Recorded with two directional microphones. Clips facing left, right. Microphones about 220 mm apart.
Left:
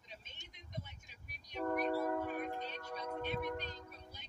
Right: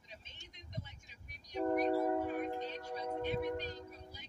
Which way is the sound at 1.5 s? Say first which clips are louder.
Right 4 dB; 20° right (ahead or behind).